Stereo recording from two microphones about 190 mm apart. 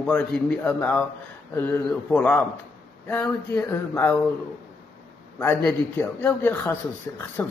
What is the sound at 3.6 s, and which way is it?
Speech, 20° left (ahead or behind).